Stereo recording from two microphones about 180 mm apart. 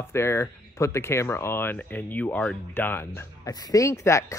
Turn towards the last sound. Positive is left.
turn(degrees=15)  # may be behind; listen again after turning